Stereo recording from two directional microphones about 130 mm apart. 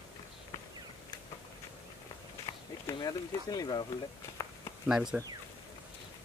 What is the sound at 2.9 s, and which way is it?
Speech, 30° left (ahead or behind).